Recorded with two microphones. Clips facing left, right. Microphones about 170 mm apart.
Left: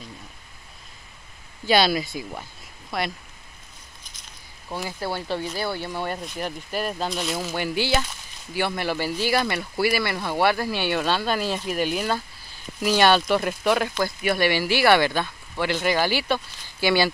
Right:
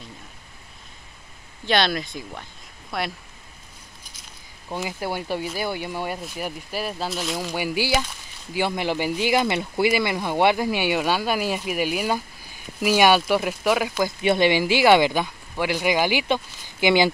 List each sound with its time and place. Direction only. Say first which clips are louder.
1.7 s speech: left 2 dB; 5° left (ahead or behind)
4.6 s speech: right 1 dB; 15° right (ahead or behind)
7.5 s speech: right 1 dB; 10° right (ahead or behind)
14.2 s speech: right 4 dB; 20° right (ahead or behind)